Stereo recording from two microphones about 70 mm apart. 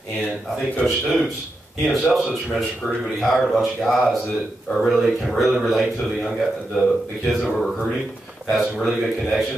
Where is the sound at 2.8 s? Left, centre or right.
Centre.